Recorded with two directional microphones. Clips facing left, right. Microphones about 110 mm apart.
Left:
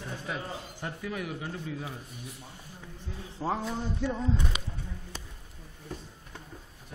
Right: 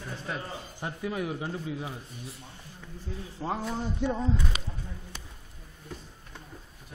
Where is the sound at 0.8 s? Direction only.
25° right (ahead or behind).